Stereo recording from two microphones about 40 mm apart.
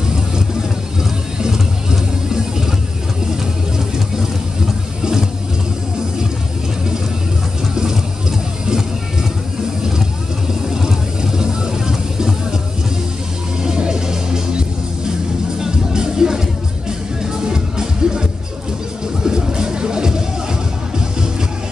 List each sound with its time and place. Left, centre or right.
1.4 s music: centre
3.7 s vehicle: centre
7.7 s a sound: centre
10.7 s vehicle: centre
13.7 s music: centre
19.2 s music: centre